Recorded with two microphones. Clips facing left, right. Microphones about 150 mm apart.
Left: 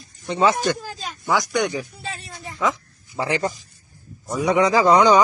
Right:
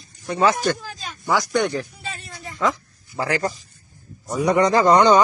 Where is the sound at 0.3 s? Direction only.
20° left (ahead or behind).